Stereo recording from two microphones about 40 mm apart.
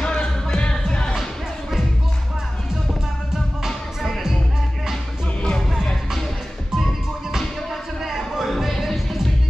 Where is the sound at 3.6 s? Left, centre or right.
Centre.